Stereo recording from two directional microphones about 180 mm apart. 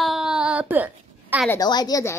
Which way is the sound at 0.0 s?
Centre (ahead or behind).